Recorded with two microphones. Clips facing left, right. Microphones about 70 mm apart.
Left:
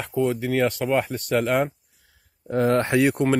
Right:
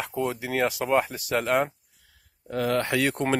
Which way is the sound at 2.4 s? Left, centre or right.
Left.